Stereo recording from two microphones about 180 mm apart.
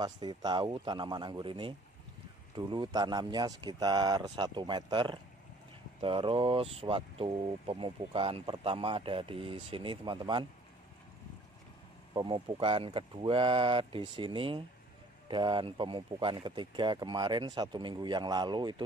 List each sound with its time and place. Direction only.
0.0 s speech: 25° right (ahead or behind)
12.1 s speech: 25° right (ahead or behind)